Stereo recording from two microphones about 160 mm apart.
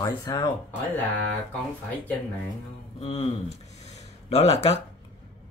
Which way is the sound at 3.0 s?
40° left (ahead or behind).